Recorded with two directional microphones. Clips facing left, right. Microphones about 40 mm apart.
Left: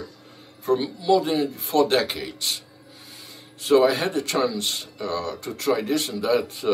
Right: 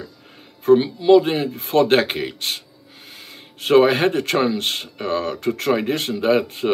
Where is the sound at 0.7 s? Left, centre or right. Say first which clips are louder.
Right 7 dB; right.